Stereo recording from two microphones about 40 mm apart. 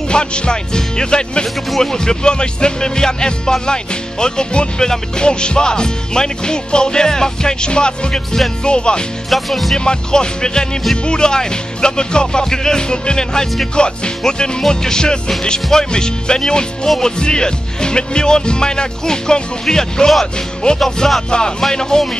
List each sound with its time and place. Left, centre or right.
0.1 s music: left
9.3 s music: centre
9.8 s music: left
14.7 s speech: centre
17.0 s music: left
19.6 s speech: centre
21.3 s speech: centre